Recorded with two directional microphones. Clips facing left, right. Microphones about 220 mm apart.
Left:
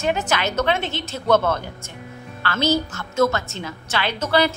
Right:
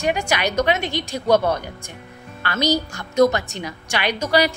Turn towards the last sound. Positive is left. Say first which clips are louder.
# right 1 dB
turn(degrees=-15)  # may be behind; listen again after turning